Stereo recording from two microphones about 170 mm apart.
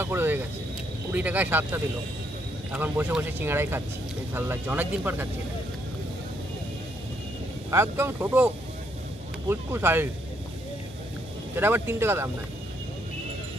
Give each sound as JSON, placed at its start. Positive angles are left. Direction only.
{"t": 0.0, "sound": "vehicle", "side_deg": -10}
{"t": 1.1, "sound": "speech", "side_deg": -10}
{"t": 7.7, "sound": "speech", "side_deg": -15}
{"t": 9.5, "sound": "speech", "side_deg": -15}
{"t": 11.5, "sound": "speech", "side_deg": -15}